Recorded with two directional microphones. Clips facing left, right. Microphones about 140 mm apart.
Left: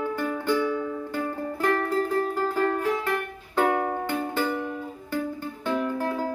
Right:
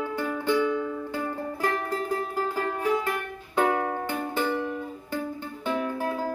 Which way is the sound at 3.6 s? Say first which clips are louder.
Left 1 dB; centre (ahead or behind).